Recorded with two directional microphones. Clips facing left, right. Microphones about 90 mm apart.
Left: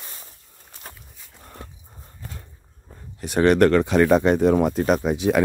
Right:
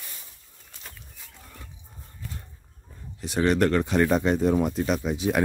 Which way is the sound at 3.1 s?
60° left (ahead or behind).